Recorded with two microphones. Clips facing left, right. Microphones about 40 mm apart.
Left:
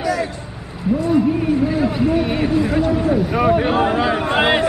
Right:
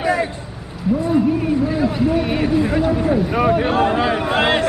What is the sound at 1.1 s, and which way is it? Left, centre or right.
Speech, centre.